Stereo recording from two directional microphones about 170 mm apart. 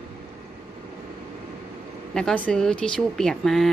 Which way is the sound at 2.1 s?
5° left (ahead or behind).